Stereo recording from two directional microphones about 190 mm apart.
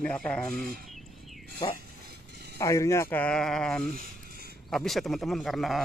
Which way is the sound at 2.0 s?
55° right (ahead or behind).